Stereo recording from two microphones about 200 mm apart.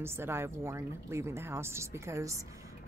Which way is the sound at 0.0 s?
10° right (ahead or behind).